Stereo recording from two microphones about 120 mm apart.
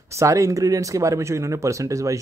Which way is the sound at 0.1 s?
25° right (ahead or behind).